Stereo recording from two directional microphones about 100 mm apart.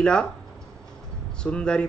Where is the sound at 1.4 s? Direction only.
10° left (ahead or behind).